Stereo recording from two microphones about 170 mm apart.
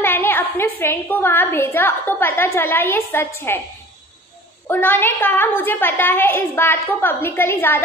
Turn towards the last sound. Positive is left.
turn(degrees=15)  # may be behind; listen again after turning